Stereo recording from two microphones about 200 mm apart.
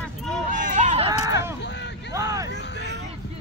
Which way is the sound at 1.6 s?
60° left (ahead or behind).